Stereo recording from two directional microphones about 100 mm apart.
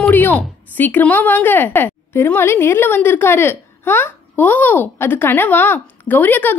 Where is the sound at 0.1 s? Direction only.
20° left (ahead or behind).